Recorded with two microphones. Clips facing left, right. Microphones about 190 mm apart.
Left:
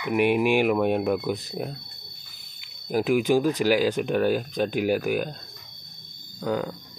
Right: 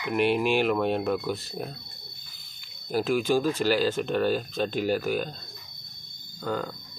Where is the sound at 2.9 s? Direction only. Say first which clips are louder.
Left 3 dB; 15° left (ahead or behind).